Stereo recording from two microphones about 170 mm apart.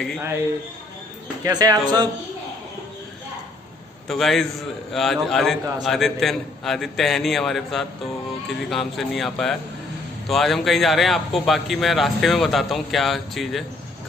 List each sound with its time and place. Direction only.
1.4 s speech: 25° right (ahead or behind)
4.1 s a man's voice: centre (ahead or behind)